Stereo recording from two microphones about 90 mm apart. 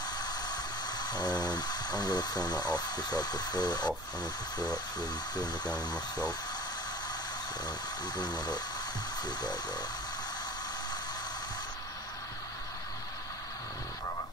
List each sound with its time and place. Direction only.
0.2 s a sound: 50° left (ahead or behind)
1.4 s speech: 50° left (ahead or behind)
5.6 s speech: 10° left (ahead or behind)
7.6 s speech: 50° left (ahead or behind)